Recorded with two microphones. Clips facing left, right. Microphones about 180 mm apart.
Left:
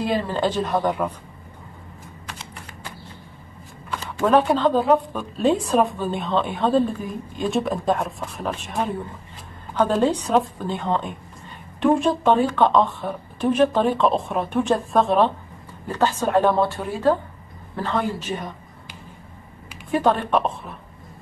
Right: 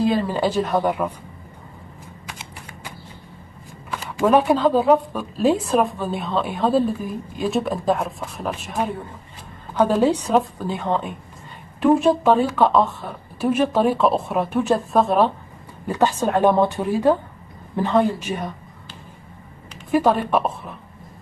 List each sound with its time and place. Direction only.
0.3 s speech: 10° right (ahead or behind)
3.9 s speech: 10° right (ahead or behind)
19.9 s speech: 5° right (ahead or behind)